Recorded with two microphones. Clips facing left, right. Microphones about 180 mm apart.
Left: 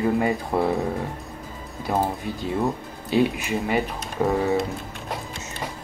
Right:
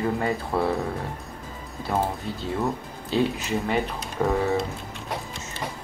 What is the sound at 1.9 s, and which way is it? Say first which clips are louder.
Speech: left 2 dB; 15° left (ahead or behind).